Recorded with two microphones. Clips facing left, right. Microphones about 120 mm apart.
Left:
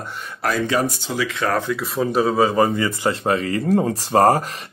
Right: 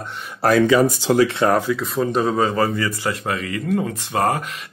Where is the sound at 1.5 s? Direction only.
10° right (ahead or behind).